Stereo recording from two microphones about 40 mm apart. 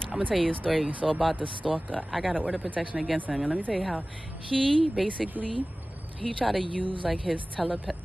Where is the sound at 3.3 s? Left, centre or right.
Centre.